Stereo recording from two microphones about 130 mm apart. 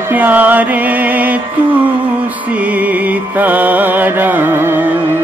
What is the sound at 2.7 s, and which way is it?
Music, 10° right (ahead or behind).